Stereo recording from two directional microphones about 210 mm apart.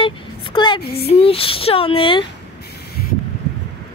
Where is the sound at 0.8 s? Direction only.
50° left (ahead or behind).